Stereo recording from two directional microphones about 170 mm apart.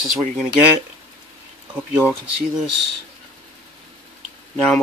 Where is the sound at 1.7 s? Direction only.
10° right (ahead or behind).